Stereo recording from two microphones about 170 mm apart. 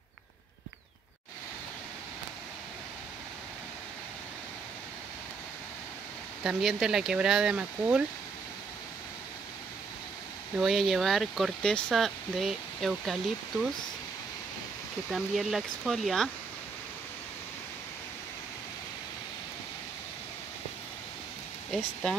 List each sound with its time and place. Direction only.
6.4 s speech: centre (ahead or behind)
10.6 s speech: centre (ahead or behind)
15.0 s speech: centre (ahead or behind)
21.6 s speech: centre (ahead or behind)